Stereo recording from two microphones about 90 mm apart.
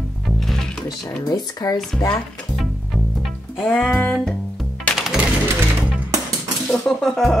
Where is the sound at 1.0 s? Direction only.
45° left (ahead or behind).